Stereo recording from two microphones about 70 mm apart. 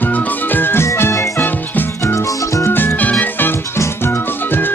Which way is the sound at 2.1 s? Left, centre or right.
Left.